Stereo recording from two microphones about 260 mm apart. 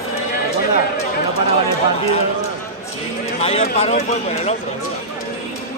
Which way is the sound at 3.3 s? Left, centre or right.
Left.